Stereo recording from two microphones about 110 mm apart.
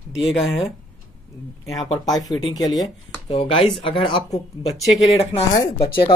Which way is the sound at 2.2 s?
35° left (ahead or behind).